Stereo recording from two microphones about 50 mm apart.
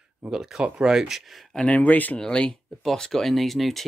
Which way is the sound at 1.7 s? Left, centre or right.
Left.